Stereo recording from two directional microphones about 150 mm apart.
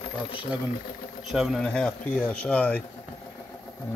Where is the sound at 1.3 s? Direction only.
Centre (ahead or behind).